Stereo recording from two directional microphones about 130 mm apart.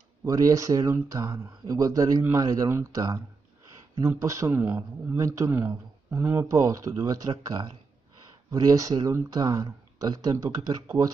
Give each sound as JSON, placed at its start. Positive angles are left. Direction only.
{"t": 0.2, "sound": "speech", "side_deg": -25}
{"t": 6.5, "sound": "speech", "side_deg": -25}